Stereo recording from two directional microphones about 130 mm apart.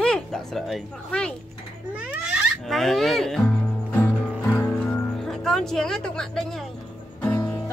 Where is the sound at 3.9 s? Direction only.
15° left (ahead or behind).